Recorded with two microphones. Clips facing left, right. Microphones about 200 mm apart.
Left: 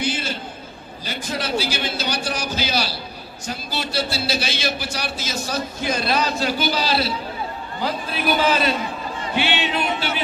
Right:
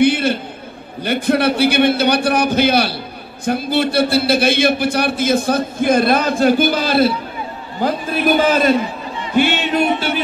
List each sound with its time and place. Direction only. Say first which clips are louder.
0.0 s a sound: right 12 dB; 60° right (ahead or behind)
1.0 s a man's voice: right 12 dB; 60° right (ahead or behind)
9.3 s music: right 8 dB; 45° right (ahead or behind)